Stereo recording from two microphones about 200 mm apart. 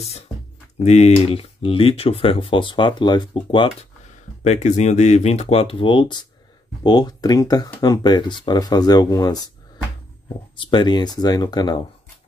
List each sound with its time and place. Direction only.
0.8 s speech: 35° left (ahead or behind)
4.4 s speech: 35° left (ahead or behind); by 9.4 s 20° left (ahead or behind)
10.5 s speech: 25° left (ahead or behind)